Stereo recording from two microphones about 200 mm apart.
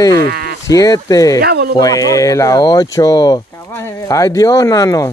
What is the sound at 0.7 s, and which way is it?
Speech, 15° left (ahead or behind).